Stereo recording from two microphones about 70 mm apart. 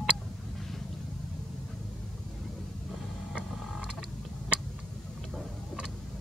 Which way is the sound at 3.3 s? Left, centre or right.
Centre.